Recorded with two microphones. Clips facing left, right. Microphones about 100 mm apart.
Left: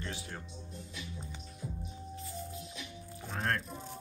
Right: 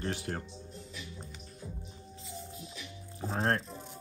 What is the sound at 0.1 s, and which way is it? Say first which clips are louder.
Speech: right 7 dB; 60° right (ahead or behind).